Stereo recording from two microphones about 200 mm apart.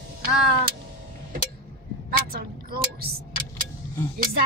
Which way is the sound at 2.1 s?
45° right (ahead or behind).